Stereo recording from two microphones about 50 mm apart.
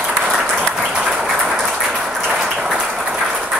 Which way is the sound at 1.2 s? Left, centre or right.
Centre.